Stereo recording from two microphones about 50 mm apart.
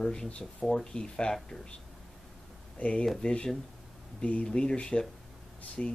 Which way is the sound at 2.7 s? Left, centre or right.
Left.